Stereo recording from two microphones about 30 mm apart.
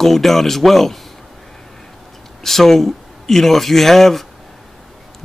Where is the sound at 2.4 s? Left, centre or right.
Centre.